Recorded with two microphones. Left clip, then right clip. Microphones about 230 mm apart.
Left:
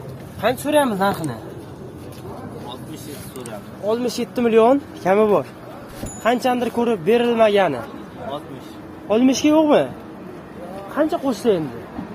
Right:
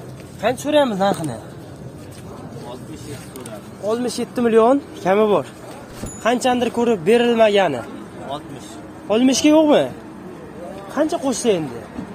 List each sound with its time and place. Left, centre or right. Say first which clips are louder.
0.4 s speech: right 1 dB; centre
3.9 s speech: even; centre
9.1 s speech: right 1 dB; centre
11.0 s speech: even; centre